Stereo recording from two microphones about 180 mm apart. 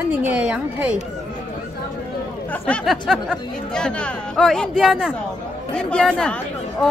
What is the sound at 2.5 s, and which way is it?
Speech, 5° left (ahead or behind).